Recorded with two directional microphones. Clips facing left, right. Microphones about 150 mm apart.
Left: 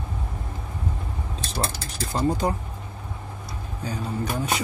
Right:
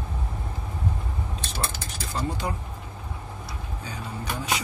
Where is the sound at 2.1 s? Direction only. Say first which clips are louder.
Left 6 dB; 40° left (ahead or behind).